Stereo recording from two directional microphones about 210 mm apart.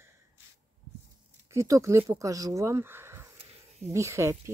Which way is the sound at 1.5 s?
15° right (ahead or behind).